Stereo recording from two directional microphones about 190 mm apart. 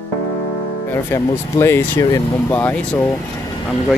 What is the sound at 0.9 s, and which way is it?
Speech, 15° left (ahead or behind).